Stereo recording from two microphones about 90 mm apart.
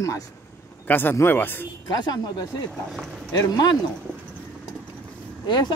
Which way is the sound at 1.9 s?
50° left (ahead or behind).